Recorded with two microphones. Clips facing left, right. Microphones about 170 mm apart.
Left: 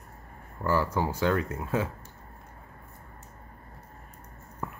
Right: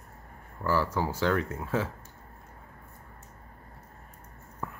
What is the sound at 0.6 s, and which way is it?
Speech, 15° left (ahead or behind).